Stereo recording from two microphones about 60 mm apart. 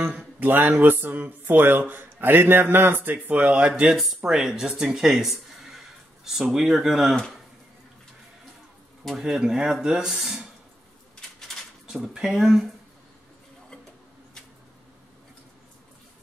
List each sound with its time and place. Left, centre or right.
0.4 s speech: right
3.9 s speech: centre
9.1 s speech: centre
11.1 s a sound: centre
11.9 s speech: centre